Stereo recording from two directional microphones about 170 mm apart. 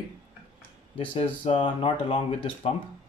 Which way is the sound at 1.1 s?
35° left (ahead or behind).